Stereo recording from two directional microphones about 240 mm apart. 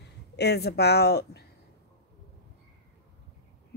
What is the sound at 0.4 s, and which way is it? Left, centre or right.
A woman's voice, left.